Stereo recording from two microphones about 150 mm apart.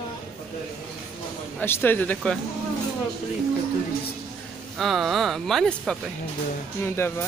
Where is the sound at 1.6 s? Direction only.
15° left (ahead or behind).